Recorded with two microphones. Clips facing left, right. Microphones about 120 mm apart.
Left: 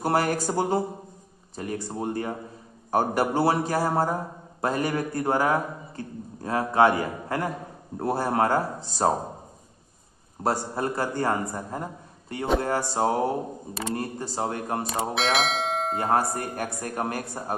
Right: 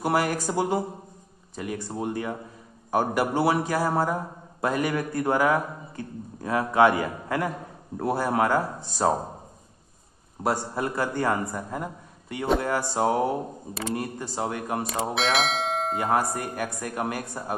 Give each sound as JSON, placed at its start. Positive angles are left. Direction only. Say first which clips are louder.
{"t": 0.0, "sound": "a man's voice", "louder": "left 1 dB", "side_deg": 40}
{"t": 10.4, "sound": "a man's voice", "louder": "even", "side_deg": 30}
{"t": 12.6, "sound": "music", "louder": "even", "side_deg": 30}
{"t": 13.9, "sound": "a man's voice", "louder": "left 1 dB", "side_deg": 30}
{"t": 15.1, "sound": "speech", "louder": "even", "side_deg": 0}
{"t": 16.0, "sound": "a man's voice", "louder": "left 1 dB", "side_deg": 35}